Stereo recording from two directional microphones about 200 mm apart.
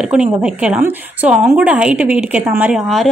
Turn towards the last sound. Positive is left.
turn(degrees=0)  # may be behind; listen again after turning